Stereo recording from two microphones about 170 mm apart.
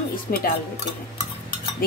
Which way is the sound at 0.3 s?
60° left (ahead or behind).